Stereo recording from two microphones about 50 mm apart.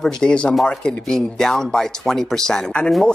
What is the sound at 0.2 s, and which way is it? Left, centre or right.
Speech, left.